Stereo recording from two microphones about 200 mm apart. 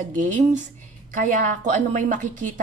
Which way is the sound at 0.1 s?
40° right (ahead or behind).